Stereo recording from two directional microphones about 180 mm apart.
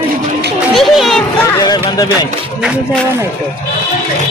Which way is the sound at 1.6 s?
20° left (ahead or behind).